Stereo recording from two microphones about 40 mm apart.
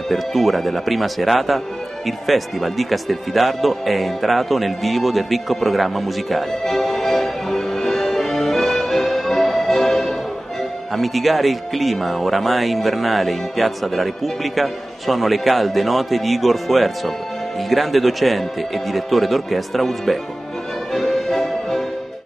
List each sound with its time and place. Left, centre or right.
0.1 s speech: centre
2.0 s music: centre
11.0 s speech: centre
20.9 s music: centre